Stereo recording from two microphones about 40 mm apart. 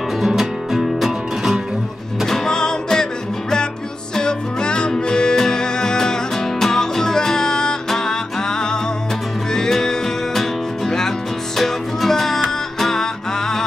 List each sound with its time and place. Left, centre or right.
0.2 s music: centre
2.2 s music: centre